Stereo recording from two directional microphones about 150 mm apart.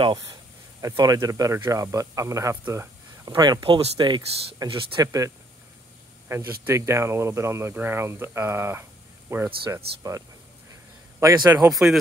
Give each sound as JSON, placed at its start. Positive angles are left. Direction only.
{"t": 0.0, "sound": "speech", "side_deg": -25}
{"t": 3.3, "sound": "speech", "side_deg": -30}
{"t": 5.0, "sound": "speech", "side_deg": -20}
{"t": 11.1, "sound": "speech", "side_deg": -20}
{"t": 11.7, "sound": "speech", "side_deg": 0}